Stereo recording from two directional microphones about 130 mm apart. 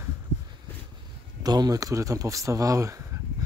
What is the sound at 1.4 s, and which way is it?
Speech, 30° right (ahead or behind).